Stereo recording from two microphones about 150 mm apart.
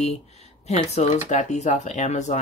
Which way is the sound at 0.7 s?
50° left (ahead or behind).